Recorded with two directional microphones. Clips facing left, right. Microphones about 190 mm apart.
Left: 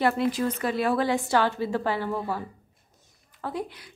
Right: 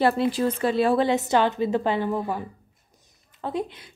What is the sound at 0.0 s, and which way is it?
A woman's voice, 30° right (ahead or behind).